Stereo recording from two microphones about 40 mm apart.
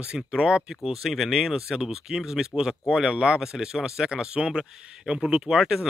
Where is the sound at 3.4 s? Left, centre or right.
Centre.